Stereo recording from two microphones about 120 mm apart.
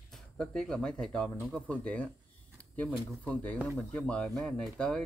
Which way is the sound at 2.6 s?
10° left (ahead or behind).